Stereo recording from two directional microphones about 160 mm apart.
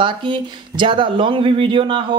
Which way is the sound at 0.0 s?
30° right (ahead or behind).